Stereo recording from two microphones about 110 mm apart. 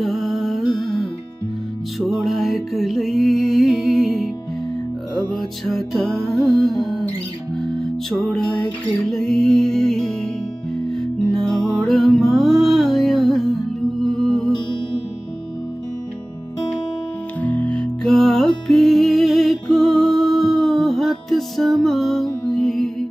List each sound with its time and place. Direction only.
0.0 s music: centre (ahead or behind)
2.0 s music: centre (ahead or behind)
5.3 s music: 5° left (ahead or behind)
17.4 s music: 10° left (ahead or behind)